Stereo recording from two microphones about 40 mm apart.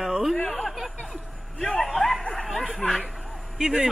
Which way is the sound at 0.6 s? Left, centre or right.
Centre.